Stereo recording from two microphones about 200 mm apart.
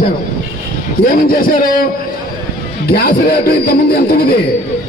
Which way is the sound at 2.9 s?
50° left (ahead or behind).